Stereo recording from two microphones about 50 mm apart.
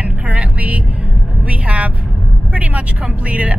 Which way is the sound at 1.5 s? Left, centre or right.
Right.